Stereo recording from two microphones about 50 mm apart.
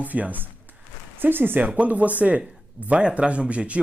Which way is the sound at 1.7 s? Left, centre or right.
Right.